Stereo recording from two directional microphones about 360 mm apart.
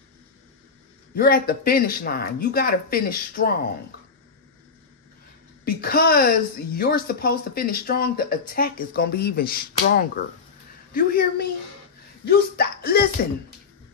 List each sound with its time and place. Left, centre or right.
1.1 s a woman's voice: left
5.7 s a woman's voice: left